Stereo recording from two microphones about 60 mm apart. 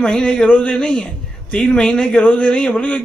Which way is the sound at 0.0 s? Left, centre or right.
Centre.